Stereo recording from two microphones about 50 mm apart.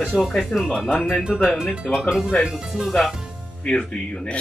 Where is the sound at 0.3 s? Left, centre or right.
Centre.